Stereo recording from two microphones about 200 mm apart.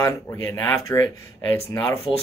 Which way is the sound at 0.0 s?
20° left (ahead or behind).